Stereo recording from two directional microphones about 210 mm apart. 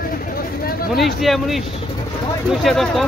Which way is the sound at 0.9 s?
Centre (ahead or behind).